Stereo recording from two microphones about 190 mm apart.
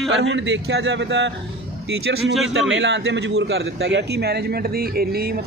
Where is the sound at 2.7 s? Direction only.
65° right (ahead or behind).